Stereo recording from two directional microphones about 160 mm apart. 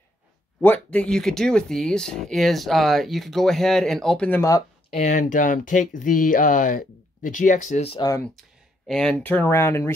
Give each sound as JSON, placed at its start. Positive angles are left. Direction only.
{"t": 0.6, "sound": "speech", "side_deg": 10}
{"t": 4.9, "sound": "speech", "side_deg": 50}
{"t": 8.0, "sound": "speech", "side_deg": 20}
{"t": 8.8, "sound": "speech", "side_deg": 5}